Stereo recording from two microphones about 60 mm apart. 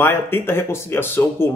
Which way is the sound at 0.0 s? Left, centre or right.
Left.